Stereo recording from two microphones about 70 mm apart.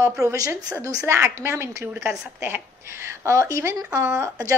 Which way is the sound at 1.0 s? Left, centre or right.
Right.